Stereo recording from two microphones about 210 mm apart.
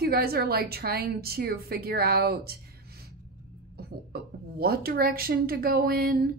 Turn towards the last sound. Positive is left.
turn(degrees=-45)  # may be behind; listen again after turning